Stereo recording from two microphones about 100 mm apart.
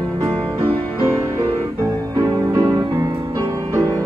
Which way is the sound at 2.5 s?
35° right (ahead or behind).